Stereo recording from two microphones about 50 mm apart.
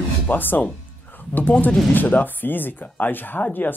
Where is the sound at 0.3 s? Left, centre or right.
Left.